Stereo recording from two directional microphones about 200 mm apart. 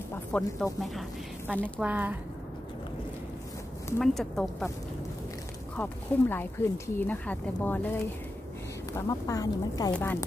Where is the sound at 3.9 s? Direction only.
Centre (ahead or behind).